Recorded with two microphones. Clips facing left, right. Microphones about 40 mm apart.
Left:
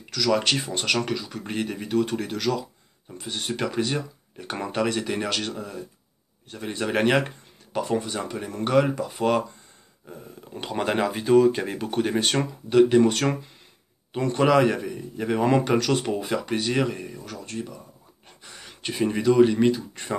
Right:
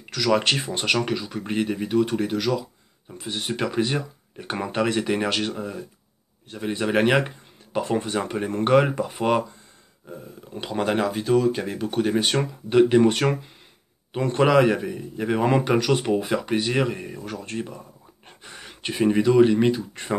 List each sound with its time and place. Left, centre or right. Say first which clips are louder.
0.0 s speech: right 2 dB; centre
10.6 s speech: right 1 dB; centre
12.4 s speech: left 1 dB; centre